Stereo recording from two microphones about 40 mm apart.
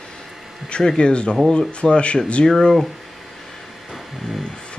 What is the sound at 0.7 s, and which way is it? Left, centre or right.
Speech, left.